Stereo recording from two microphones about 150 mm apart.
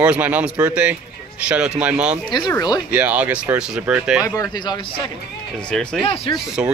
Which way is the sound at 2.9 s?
10° right (ahead or behind).